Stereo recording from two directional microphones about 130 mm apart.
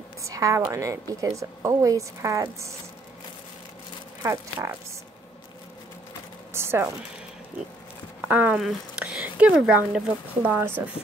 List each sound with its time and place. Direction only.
0.2 s a woman's voice: 25° right (ahead or behind)
4.2 s a woman's voice: 20° right (ahead or behind)
6.5 s a sound: 20° right (ahead or behind)
8.3 s speech: 10° right (ahead or behind)